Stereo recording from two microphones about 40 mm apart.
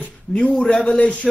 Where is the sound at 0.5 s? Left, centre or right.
Left.